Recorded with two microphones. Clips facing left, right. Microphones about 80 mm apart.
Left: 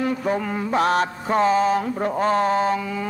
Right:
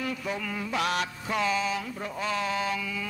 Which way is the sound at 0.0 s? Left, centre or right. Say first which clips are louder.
Left 9 dB; left.